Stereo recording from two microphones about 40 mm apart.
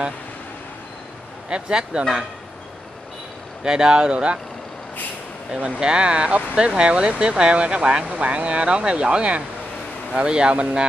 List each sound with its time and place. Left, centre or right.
1.5 s speech: right
3.6 s speech: right
5.8 s speech: right